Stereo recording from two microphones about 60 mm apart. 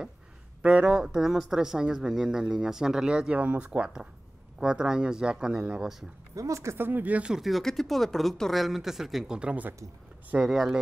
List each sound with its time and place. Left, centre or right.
0.6 s speech: right
0.8 s speech: centre
6.3 s speech: right
6.8 s speech: right
7.2 s speech: centre
9.4 s speech: right
10.4 s speech: centre